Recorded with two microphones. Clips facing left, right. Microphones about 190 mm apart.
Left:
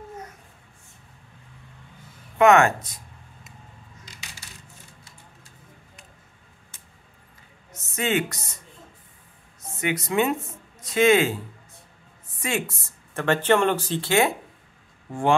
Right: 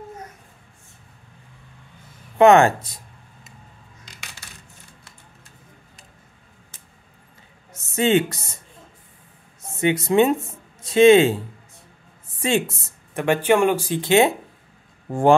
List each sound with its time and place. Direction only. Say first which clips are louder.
2.3 s speech: right 4 dB; 30° right (ahead or behind)
7.9 s speech: right 6 dB; 30° right (ahead or behind)
9.8 s speech: right 6 dB; 25° right (ahead or behind)
12.4 s speech: right 6 dB; 30° right (ahead or behind)
15.0 s speech: right 6 dB; 45° right (ahead or behind)